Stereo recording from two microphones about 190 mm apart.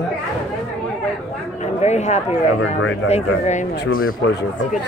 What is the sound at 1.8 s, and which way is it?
Speech, 35° left (ahead or behind).